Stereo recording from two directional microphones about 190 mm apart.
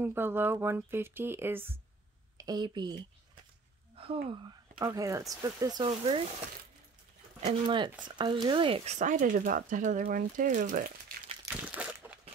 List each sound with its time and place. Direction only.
0.0 s speech: 10° right (ahead or behind); by 6.2 s 30° right (ahead or behind)
7.3 s speech: 30° right (ahead or behind); by 11.1 s 50° right (ahead or behind)
11.4 s a sound: 10° right (ahead or behind)